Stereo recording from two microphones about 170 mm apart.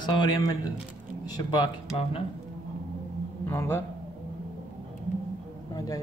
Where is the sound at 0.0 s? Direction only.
25° left (ahead or behind).